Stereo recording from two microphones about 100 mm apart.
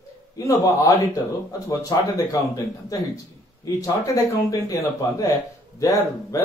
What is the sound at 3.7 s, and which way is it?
Speech, 35° left (ahead or behind).